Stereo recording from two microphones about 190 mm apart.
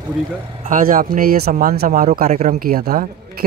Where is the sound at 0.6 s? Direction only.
45° right (ahead or behind).